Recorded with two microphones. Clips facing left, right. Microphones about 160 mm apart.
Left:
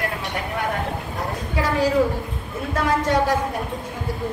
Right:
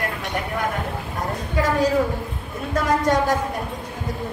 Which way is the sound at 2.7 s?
45° right (ahead or behind).